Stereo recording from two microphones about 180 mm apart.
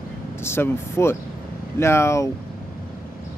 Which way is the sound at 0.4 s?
15° left (ahead or behind).